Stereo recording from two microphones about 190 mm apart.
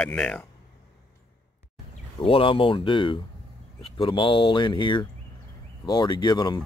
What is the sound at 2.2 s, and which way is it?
Speech, 30° left (ahead or behind).